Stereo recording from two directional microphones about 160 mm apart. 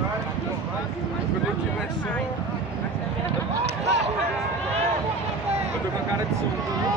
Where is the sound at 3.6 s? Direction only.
45° right (ahead or behind).